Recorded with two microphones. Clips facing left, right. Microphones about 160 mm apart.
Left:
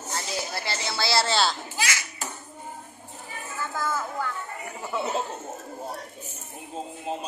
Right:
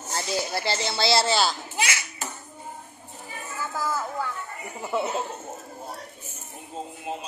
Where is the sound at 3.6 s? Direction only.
5° right (ahead or behind).